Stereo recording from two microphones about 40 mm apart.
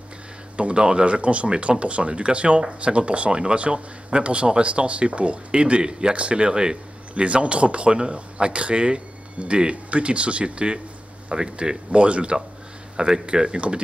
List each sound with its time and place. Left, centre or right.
0.6 s speech: right
11.9 s speech: right